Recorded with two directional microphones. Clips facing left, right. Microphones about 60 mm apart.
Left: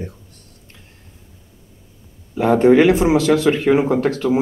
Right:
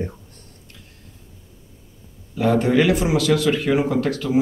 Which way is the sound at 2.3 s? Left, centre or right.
Left.